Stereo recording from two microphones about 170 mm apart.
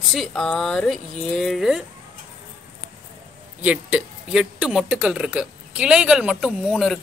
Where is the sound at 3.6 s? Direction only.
10° right (ahead or behind).